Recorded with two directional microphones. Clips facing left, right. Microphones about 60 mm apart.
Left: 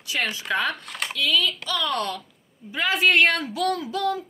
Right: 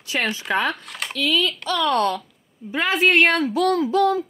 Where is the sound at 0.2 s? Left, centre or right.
Centre.